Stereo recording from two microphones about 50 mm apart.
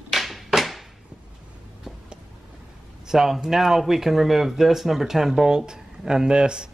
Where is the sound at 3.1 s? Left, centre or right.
Centre.